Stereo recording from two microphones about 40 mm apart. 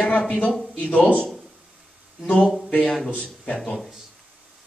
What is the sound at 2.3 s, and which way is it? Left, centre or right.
A man's voice, centre.